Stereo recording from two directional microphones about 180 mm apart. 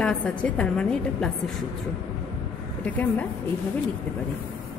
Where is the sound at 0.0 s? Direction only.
5° left (ahead or behind).